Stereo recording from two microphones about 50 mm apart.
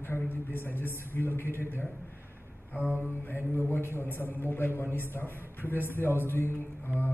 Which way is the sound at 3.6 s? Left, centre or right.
Left.